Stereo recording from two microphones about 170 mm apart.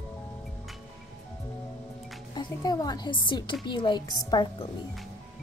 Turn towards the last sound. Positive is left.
turn(degrees=25)  # may be behind; listen again after turning